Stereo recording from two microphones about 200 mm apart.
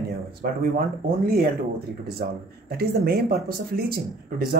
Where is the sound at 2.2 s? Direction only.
45° right (ahead or behind).